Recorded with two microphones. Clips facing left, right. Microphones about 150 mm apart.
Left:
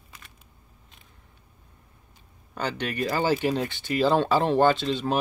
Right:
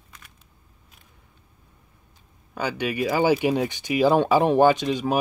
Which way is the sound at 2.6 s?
10° right (ahead or behind).